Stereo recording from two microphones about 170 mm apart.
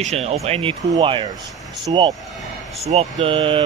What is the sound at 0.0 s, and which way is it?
Speech, 40° right (ahead or behind).